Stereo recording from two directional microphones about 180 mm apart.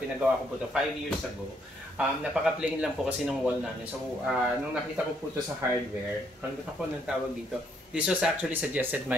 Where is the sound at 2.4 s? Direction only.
5° right (ahead or behind).